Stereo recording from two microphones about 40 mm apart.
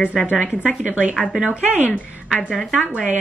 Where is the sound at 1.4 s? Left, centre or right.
Right.